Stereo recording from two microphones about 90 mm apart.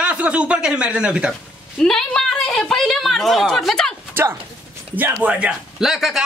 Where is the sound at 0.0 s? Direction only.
15° right (ahead or behind).